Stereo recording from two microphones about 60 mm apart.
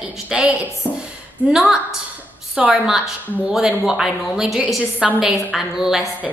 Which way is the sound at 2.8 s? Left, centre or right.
Centre.